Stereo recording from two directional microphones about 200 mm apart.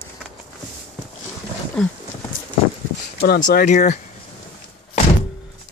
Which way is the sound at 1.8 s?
Centre (ahead or behind).